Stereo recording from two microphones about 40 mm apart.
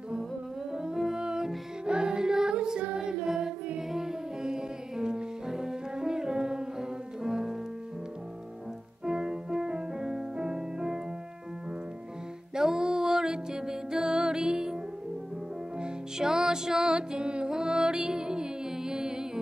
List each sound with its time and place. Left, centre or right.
0.7 s music: centre
9.0 s music: centre
12.5 s music: centre
15.8 s music: centre